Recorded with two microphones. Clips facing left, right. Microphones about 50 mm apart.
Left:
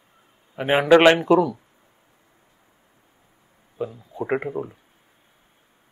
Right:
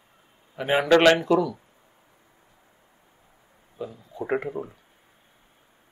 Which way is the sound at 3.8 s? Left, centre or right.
Left.